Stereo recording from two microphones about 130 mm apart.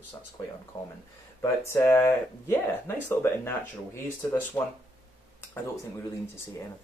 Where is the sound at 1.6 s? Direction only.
15° left (ahead or behind).